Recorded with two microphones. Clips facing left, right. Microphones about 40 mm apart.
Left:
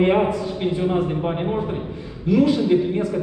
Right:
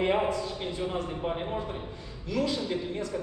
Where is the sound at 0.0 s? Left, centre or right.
Left.